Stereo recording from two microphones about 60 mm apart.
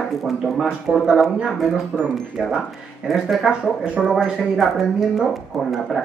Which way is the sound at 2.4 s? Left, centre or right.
Centre.